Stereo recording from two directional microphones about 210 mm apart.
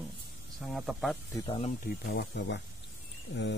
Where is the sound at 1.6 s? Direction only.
35° left (ahead or behind); by 2.6 s 55° left (ahead or behind).